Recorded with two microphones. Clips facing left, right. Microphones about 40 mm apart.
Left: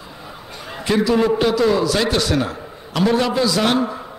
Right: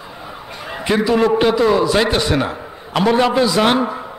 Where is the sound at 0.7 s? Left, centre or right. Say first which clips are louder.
Right 1 dB; right.